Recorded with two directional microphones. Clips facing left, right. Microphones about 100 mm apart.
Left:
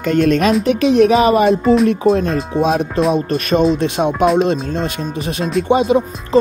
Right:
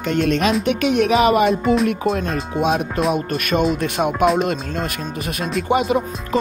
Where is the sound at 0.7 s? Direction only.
35° left (ahead or behind).